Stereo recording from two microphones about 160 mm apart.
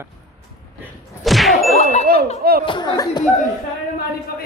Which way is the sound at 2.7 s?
25° left (ahead or behind).